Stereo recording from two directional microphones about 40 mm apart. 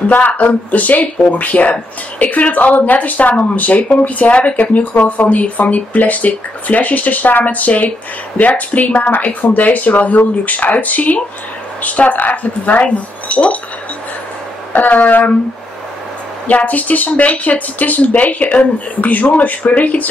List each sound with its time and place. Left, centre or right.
0.1 s speech: left
14.7 s speech: left
16.4 s speech: left